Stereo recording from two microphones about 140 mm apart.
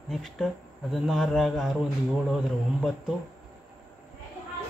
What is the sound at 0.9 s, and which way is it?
Speech, centre (ahead or behind).